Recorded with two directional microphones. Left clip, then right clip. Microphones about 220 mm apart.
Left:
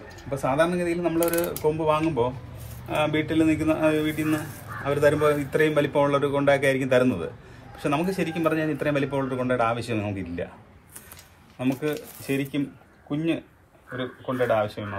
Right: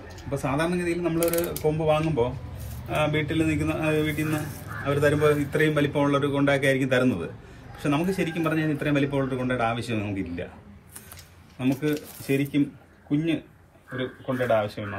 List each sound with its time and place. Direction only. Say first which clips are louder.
0.4 s a man's voice: left 4 dB; 15° left (ahead or behind)
11.5 s a man's voice: right 1 dB; 15° left (ahead or behind)